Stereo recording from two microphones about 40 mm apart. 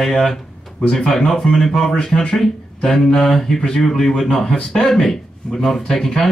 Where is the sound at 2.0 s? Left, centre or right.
Centre.